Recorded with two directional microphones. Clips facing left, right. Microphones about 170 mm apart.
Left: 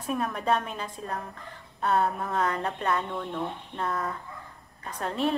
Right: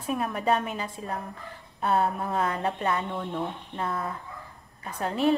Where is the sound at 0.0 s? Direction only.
5° right (ahead or behind).